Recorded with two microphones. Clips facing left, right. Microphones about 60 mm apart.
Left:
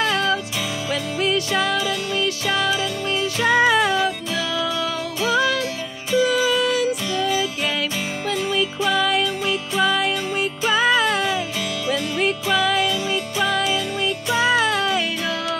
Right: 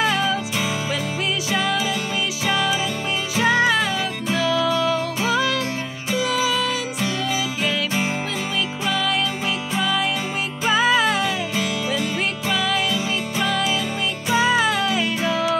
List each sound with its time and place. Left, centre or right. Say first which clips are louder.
0.0 s music: even; centre
8.5 s music: left 3 dB; centre